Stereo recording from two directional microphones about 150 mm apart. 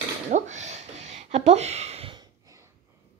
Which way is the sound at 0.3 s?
50° right (ahead or behind).